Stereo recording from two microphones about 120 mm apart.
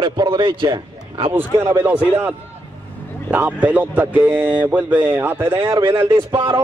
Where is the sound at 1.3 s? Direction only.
20° right (ahead or behind).